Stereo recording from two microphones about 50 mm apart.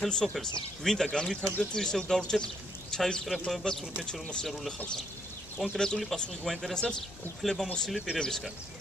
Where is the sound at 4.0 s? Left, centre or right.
Centre.